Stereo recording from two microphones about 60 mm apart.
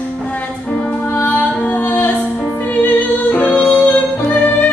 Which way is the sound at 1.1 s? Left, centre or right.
Left.